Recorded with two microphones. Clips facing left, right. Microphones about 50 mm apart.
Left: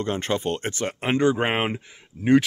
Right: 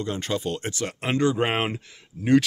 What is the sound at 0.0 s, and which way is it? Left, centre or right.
Speech, left.